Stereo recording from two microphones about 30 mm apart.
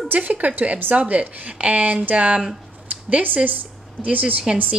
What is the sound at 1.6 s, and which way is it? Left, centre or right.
Speech, right.